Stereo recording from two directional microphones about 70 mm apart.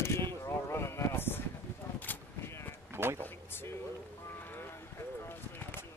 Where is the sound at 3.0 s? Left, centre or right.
Right.